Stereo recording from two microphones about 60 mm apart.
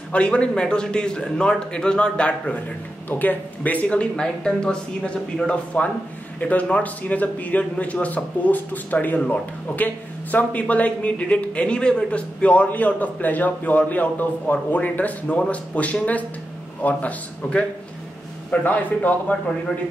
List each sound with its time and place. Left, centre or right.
0.1 s a man's voice: centre
3.1 s a man's voice: left